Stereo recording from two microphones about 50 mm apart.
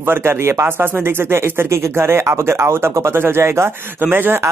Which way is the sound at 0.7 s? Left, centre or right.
Right.